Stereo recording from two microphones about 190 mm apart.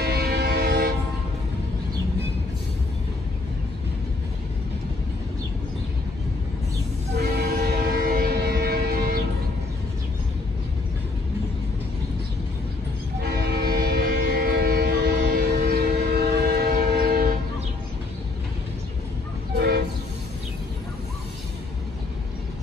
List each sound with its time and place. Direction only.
0.0 s train: 55° right (ahead or behind)
7.2 s train: 60° right (ahead or behind)
13.5 s train: 55° right (ahead or behind)
19.5 s train: 60° right (ahead or behind)